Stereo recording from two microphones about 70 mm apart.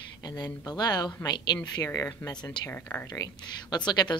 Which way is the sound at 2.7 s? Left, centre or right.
Left.